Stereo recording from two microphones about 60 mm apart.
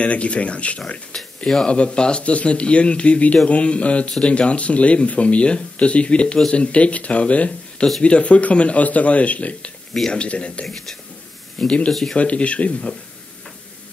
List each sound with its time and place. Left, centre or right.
0.0 s speech: centre
1.1 s speech: centre
11.9 s speech: centre
12.2 s speech: centre